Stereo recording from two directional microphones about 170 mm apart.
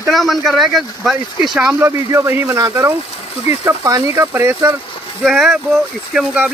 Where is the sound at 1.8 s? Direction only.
15° right (ahead or behind).